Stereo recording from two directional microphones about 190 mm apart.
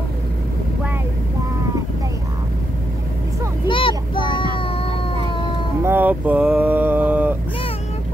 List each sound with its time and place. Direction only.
3.6 s a sound: 25° left (ahead or behind)
4.2 s child singing: 25° left (ahead or behind)
5.8 s mantra: 10° right (ahead or behind)